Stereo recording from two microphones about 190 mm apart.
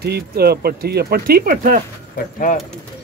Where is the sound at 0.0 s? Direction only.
55° right (ahead or behind).